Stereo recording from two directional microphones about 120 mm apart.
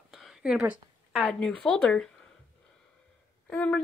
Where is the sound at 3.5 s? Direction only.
10° left (ahead or behind).